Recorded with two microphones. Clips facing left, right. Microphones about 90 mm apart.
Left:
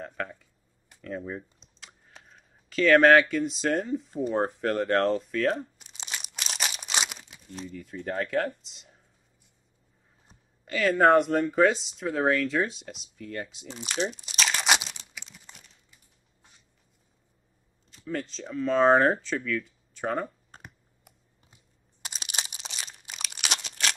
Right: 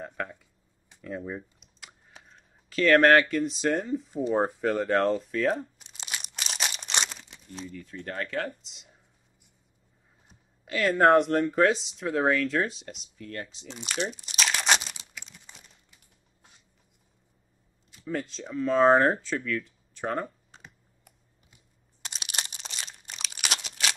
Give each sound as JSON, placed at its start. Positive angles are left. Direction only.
{"t": 0.0, "sound": "a sound", "side_deg": -5}
{"t": 1.0, "sound": "speech", "side_deg": -5}
{"t": 1.8, "sound": "a sound", "side_deg": -5}
{"t": 10.6, "sound": "speech", "side_deg": 0}
{"t": 15.1, "sound": "crumpling", "side_deg": 0}
{"t": 17.9, "sound": "speech", "side_deg": -5}
{"t": 20.5, "sound": "computer keyboard", "side_deg": 45}
{"t": 22.0, "sound": "crunch", "side_deg": 0}